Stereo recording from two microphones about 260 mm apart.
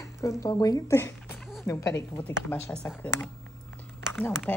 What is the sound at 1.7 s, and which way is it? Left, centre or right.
Speech, centre.